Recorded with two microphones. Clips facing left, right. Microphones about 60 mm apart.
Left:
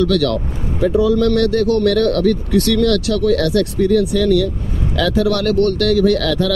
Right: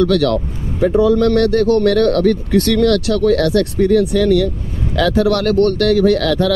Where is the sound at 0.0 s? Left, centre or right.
Right.